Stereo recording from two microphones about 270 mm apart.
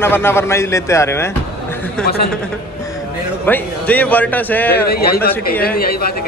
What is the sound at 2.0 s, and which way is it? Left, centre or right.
Speech, left.